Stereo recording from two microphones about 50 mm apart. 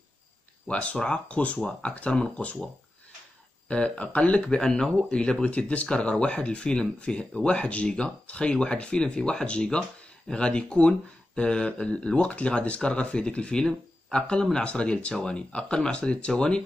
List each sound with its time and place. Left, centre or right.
0.7 s speech: left
5.5 s speech: left
13.7 s speech: centre